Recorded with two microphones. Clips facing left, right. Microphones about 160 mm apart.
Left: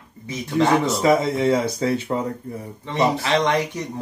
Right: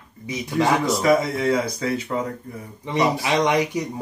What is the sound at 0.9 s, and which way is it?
Speech, 25° left (ahead or behind).